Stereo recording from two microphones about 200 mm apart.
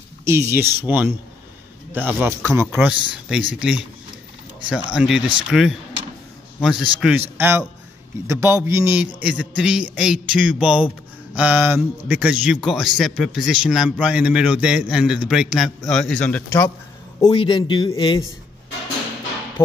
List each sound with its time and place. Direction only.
0.2 s a man's voice: 15° right (ahead or behind); by 16.6 s 5° left (ahead or behind)
17.2 s speech: 25° left (ahead or behind)